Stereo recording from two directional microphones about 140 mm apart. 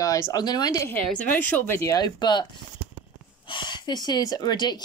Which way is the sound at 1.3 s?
10° left (ahead or behind).